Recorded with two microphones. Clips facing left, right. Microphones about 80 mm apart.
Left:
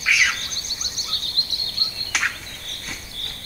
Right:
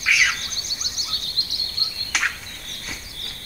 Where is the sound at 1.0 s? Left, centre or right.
Left.